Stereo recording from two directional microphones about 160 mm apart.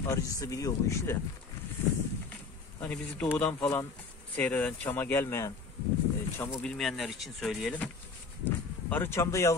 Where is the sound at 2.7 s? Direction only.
10° left (ahead or behind).